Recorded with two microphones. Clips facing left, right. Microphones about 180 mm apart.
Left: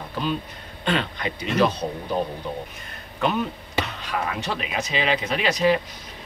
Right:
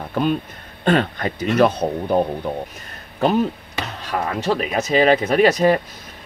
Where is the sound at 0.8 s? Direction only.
50° right (ahead or behind).